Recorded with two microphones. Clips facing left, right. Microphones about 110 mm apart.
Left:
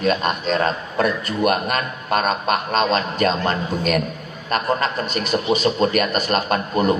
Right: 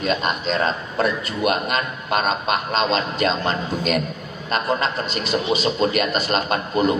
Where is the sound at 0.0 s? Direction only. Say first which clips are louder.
Left 2 dB; 45° left (ahead or behind).